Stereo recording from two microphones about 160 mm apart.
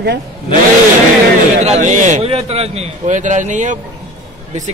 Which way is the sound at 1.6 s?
45° right (ahead or behind).